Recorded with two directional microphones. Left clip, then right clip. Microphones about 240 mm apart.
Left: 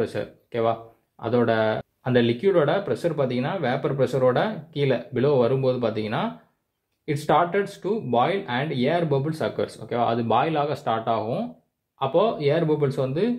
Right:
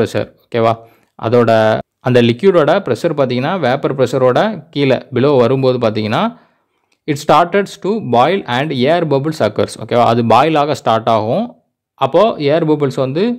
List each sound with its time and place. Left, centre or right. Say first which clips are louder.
0.0 s speech: right 11 dB; right